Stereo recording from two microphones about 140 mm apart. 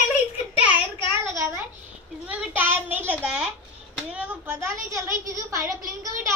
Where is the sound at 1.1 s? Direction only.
20° right (ahead or behind).